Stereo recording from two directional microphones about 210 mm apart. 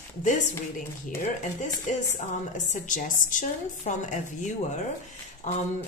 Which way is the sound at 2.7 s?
40° left (ahead or behind).